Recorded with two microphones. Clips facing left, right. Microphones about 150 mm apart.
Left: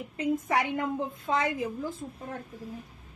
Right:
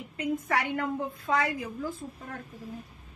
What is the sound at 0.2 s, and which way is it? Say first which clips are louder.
Child singing: left 2 dB; 20° left (ahead or behind).